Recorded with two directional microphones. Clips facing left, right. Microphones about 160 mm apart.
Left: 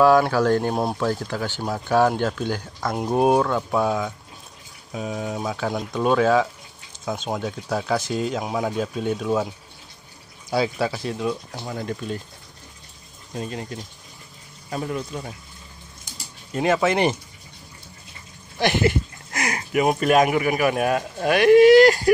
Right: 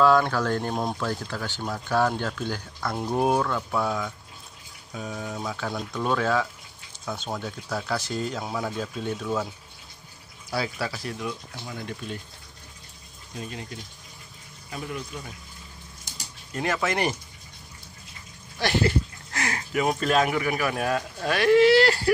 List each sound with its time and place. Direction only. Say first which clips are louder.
0.0 s speech: left 4 dB; 10° left (ahead or behind)
0.7 s speech: left 4 dB; 30° left (ahead or behind)
1.0 s speech: left 6 dB; 15° left (ahead or behind)
10.5 s speech: left 7 dB; 20° left (ahead or behind)
11.7 s speech: left 6 dB; 40° left (ahead or behind)
13.4 s speech: left 6 dB; 40° left (ahead or behind)
14.7 s speech: left 6 dB; 40° left (ahead or behind)
16.5 s speech: left 6 dB; 20° left (ahead or behind)
18.6 s speech: left 3 dB; 15° left (ahead or behind)